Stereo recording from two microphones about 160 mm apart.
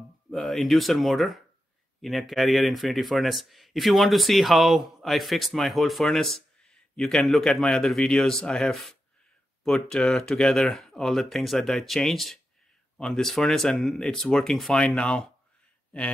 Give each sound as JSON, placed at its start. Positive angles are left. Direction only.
{"t": 0.3, "sound": "speech", "side_deg": 0}